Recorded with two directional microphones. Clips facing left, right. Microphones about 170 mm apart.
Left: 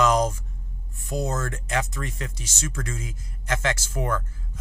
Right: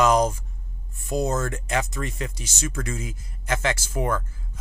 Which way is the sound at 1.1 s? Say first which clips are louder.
Right 3 dB; 25° right (ahead or behind).